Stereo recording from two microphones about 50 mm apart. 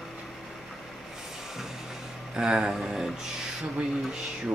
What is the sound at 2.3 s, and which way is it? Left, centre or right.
Speech, centre.